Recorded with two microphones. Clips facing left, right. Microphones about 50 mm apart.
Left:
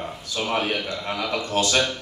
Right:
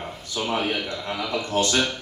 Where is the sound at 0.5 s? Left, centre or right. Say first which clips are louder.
Left 1 dB; left.